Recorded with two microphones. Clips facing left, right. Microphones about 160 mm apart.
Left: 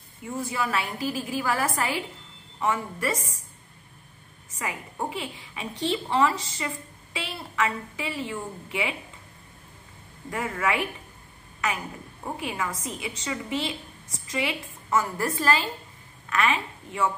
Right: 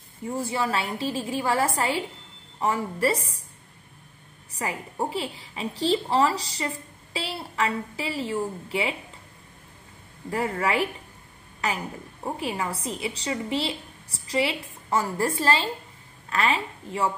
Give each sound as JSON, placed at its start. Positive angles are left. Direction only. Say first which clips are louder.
{"t": 0.2, "sound": "a woman's voice", "louder": "right 2 dB", "side_deg": -30}
{"t": 4.6, "sound": "a woman's voice", "louder": "right 3 dB", "side_deg": -35}
{"t": 10.3, "sound": "a woman's voice", "louder": "right 2 dB", "side_deg": -35}